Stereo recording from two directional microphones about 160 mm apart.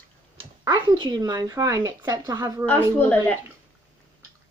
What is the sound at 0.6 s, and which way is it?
A woman's voice, 30° right (ahead or behind).